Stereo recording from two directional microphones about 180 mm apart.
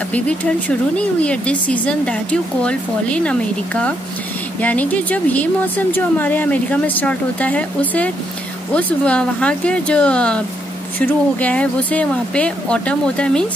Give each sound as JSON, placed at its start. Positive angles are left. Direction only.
{"t": 0.1, "sound": "speech", "side_deg": 10}